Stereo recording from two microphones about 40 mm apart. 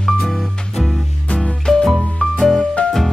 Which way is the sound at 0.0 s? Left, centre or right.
Centre.